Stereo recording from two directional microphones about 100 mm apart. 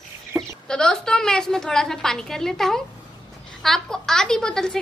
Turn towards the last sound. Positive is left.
turn(degrees=5)  # may be behind; listen again after turning